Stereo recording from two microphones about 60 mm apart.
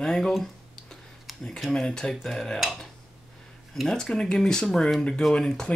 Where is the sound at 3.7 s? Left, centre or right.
Centre.